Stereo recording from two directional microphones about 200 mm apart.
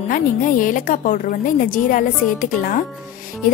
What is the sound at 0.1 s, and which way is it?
A woman's voice, 40° left (ahead or behind).